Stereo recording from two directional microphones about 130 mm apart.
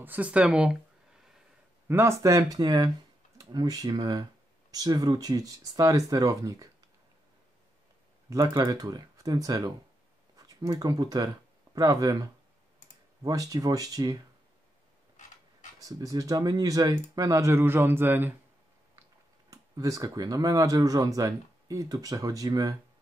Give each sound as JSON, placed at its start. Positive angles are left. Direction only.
{"t": 0.0, "sound": "speech", "side_deg": -10}
{"t": 1.9, "sound": "speech", "side_deg": -20}
{"t": 8.5, "sound": "speech", "side_deg": -30}
{"t": 15.8, "sound": "speech", "side_deg": -30}
{"t": 19.5, "sound": "speech", "side_deg": -25}